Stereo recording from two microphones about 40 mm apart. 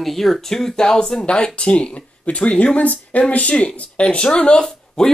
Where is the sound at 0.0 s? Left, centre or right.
Centre.